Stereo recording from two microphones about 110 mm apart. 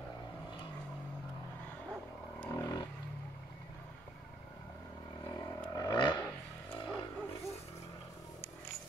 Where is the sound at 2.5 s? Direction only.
30° left (ahead or behind).